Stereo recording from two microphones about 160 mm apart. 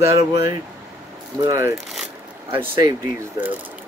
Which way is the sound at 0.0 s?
20° right (ahead or behind).